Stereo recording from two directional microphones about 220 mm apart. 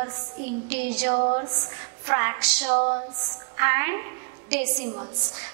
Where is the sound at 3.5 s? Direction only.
15° right (ahead or behind).